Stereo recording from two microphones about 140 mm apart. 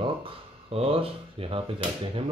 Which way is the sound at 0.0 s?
40° right (ahead or behind).